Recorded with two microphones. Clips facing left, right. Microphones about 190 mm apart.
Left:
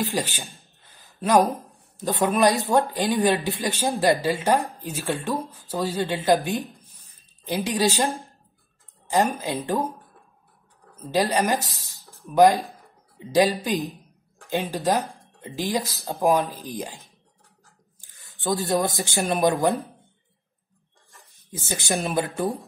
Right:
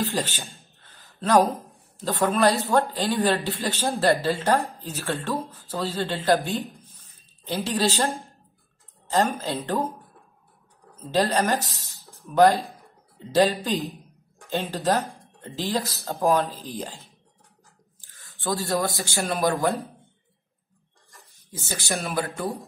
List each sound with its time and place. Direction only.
0.1 s speech: 15° left (ahead or behind)
0.8 s a sound: 15° left (ahead or behind)
2.0 s speech: 15° left (ahead or behind)
11.1 s speech: 15° left (ahead or behind)
18.1 s speech: 20° left (ahead or behind)
21.6 s speech: 20° left (ahead or behind)